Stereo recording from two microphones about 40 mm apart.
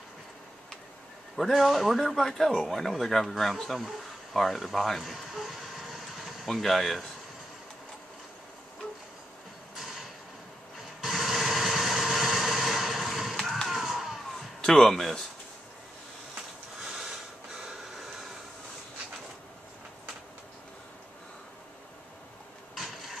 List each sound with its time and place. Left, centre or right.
1.3 s a man's voice: centre
4.8 s vehicle: centre
9.8 s mechanisms: centre
11.0 s a sound: centre
14.6 s a man's voice: centre
17.6 s printer: centre
22.8 s a sound: centre